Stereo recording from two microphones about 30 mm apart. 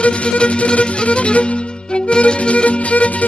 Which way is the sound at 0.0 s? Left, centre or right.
Left.